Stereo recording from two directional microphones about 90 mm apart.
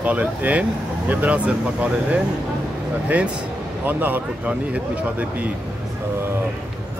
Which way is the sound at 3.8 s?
20° right (ahead or behind).